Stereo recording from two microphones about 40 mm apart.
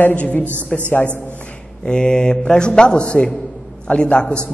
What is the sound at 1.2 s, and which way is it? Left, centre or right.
Speech, left.